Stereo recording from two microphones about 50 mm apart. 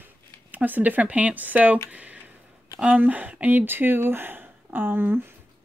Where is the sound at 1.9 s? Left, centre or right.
Right.